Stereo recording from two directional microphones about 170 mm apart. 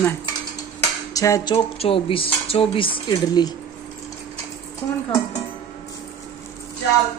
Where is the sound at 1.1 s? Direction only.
20° left (ahead or behind).